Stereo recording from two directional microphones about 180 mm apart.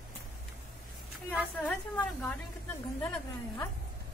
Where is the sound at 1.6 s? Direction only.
10° left (ahead or behind).